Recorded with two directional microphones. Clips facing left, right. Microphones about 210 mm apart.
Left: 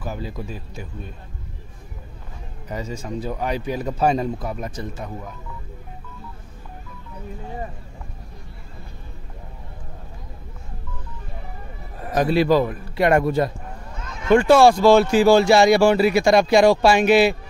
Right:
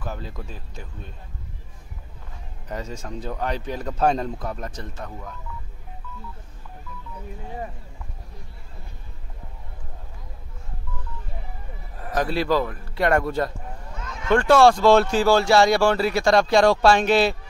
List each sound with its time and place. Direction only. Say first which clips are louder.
0.0 s speech: left 4 dB; 5° left (ahead or behind)
2.7 s speech: left 3 dB; 5° left (ahead or behind)
12.0 s speech: left 5 dB; 15° left (ahead or behind)